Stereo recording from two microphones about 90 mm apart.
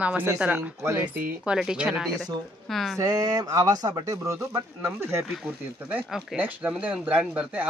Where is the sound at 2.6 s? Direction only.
Centre (ahead or behind).